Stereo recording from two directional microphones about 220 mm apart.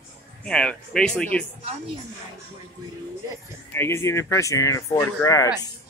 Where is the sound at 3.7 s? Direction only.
10° left (ahead or behind).